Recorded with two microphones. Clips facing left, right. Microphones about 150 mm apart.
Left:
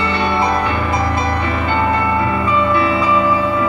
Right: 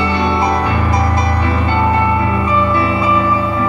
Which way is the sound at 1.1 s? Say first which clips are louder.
Right 2 dB; 35° right (ahead or behind).